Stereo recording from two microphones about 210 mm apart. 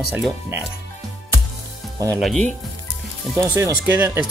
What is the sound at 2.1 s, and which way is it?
Speech, centre (ahead or behind).